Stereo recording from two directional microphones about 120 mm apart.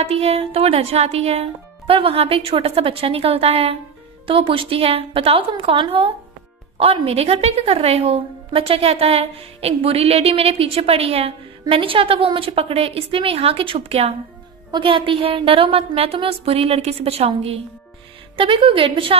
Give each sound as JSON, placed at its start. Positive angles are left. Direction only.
{"t": 0.0, "sound": "a woman's voice", "side_deg": -55}
{"t": 14.7, "sound": "a woman's voice", "side_deg": -45}